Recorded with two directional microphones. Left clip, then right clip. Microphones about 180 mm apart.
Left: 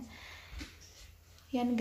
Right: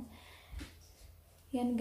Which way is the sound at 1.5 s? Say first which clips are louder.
Left 2 dB; 30° left (ahead or behind).